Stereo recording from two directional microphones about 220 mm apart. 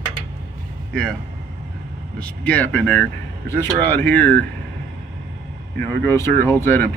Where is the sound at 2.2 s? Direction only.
5° left (ahead or behind).